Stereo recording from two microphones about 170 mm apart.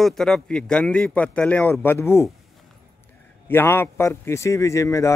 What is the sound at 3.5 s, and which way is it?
A man's voice, 15° left (ahead or behind).